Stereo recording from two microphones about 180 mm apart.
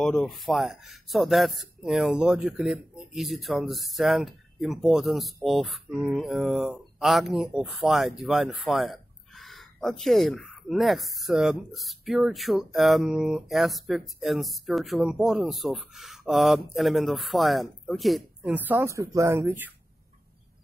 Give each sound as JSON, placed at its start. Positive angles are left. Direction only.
{"t": 0.0, "sound": "speech", "side_deg": 0}